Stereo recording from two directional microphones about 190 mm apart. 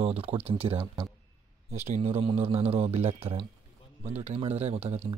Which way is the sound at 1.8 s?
30° right (ahead or behind).